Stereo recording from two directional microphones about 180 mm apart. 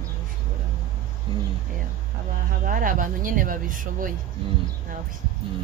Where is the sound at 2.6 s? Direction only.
50° right (ahead or behind).